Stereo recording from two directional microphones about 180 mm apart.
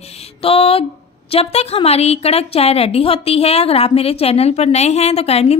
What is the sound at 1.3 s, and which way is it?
A woman's voice, 35° left (ahead or behind).